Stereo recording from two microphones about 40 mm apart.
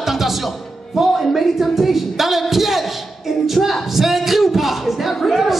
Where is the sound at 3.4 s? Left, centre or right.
Centre.